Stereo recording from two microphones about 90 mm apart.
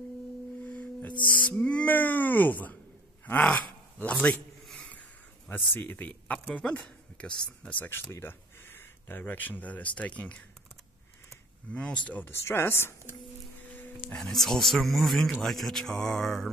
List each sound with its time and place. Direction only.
1.2 s speech: 15° left (ahead or behind)
5.7 s speech: 20° left (ahead or behind)
7.8 s speech: 25° left (ahead or behind)
11.7 s speech: 15° left (ahead or behind)
13.7 s music: 20° left (ahead or behind)
14.1 s speech: 5° left (ahead or behind)